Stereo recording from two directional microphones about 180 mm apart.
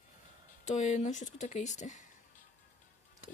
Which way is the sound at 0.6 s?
40° left (ahead or behind).